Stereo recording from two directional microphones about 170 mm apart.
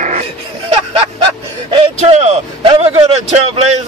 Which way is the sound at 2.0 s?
40° right (ahead or behind).